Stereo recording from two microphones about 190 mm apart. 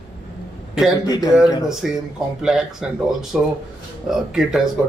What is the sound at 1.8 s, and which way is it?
Speech, 5° right (ahead or behind).